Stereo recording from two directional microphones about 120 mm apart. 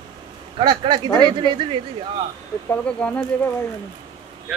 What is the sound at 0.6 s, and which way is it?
Speech, 40° right (ahead or behind).